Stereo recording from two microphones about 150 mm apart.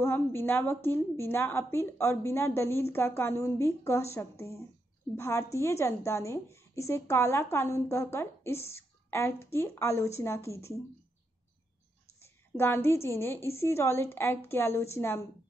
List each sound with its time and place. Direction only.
0.0 s a woman's voice: 15° left (ahead or behind)
12.2 s a woman's voice: 15° left (ahead or behind)